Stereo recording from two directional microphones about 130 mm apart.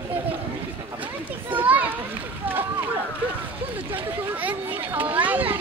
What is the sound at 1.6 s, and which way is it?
Speech, 15° right (ahead or behind).